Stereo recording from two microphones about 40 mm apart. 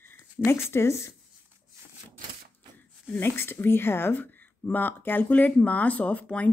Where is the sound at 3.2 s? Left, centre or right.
Left.